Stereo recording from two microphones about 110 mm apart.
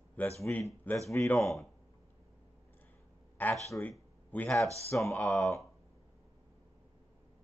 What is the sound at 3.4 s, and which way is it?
Speech, 15° left (ahead or behind).